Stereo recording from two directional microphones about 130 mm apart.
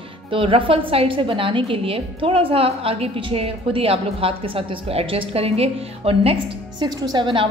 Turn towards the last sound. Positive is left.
turn(degrees=-40)  # may be behind; listen again after turning